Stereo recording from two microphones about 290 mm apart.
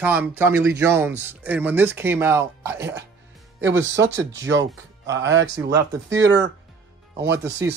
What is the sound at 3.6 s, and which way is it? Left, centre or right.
Speech, right.